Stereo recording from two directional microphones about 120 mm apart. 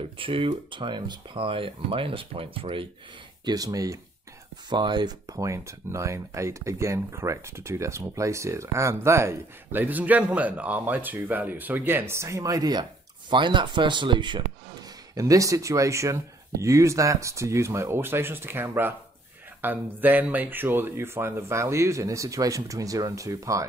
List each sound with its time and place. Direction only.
0.2 s speech: 45° right (ahead or behind)
3.4 s speech: 30° right (ahead or behind)
15.1 s speech: 30° right (ahead or behind)